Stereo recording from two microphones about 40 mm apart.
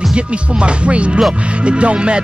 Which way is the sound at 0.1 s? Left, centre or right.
Right.